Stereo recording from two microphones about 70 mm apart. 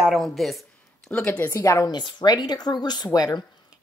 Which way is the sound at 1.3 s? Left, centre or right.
Left.